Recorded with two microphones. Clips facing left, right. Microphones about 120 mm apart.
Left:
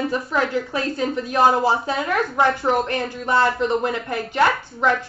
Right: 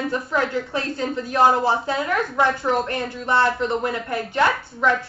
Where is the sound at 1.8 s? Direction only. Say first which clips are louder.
Left 1 dB; 20° left (ahead or behind).